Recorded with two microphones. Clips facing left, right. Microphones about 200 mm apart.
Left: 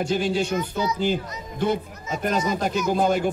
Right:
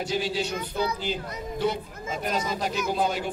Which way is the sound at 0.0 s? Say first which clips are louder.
Left 5 dB; 50° left (ahead or behind).